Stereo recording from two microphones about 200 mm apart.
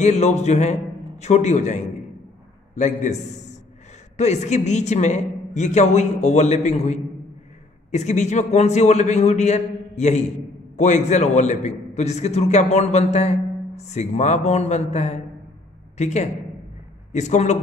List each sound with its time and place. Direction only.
0.0 s a man's voice: 35° left (ahead or behind)